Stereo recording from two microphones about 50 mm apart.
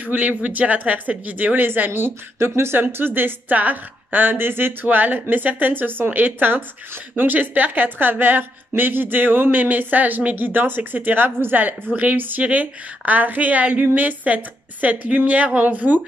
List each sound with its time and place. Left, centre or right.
0.0 s a woman's voice: right
1.9 s a woman's voice: right
2.8 s a woman's voice: right
4.8 s a woman's voice: right